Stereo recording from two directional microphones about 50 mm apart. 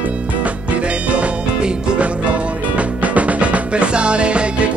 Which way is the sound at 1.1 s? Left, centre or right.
Right.